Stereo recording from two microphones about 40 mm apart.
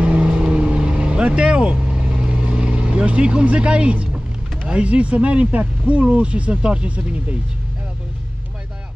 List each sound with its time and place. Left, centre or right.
0.0 s vehicle: right
4.6 s speech: right